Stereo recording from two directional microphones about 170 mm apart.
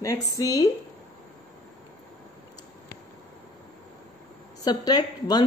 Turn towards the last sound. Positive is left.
turn(degrees=25)  # may be behind; listen again after turning